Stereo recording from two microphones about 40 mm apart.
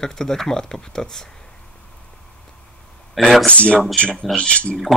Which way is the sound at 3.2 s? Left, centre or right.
Centre.